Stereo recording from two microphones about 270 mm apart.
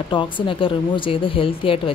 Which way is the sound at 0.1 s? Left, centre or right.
Centre.